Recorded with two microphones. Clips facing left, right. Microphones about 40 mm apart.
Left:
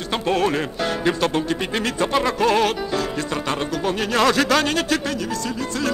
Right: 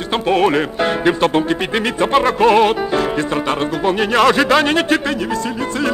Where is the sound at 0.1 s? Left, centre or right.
Right.